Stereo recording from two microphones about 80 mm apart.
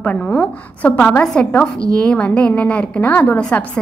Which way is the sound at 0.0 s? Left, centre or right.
Centre.